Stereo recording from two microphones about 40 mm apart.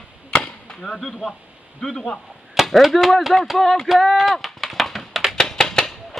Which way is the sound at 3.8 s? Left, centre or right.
Centre.